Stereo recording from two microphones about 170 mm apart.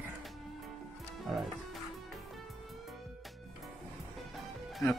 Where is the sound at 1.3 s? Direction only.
5° right (ahead or behind).